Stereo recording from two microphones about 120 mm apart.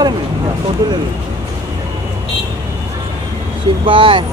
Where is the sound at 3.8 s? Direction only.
45° right (ahead or behind).